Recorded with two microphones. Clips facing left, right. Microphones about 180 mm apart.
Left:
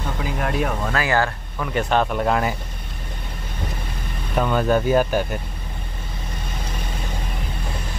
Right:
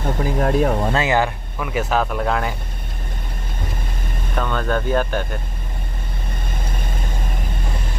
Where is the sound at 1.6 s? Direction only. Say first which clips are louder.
Even; 5° right (ahead or behind).